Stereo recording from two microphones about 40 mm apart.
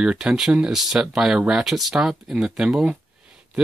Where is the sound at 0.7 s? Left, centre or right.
Centre.